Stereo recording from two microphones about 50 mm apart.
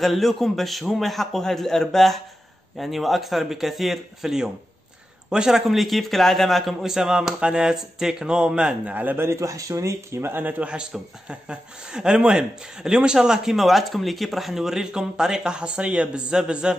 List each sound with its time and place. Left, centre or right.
0.0 s a man's voice: centre
5.7 s a man's voice: centre
6.8 s speech: centre
8.9 s a man's voice: right
9.2 s speech: right
10.6 s a man's voice: right
16.3 s speech: centre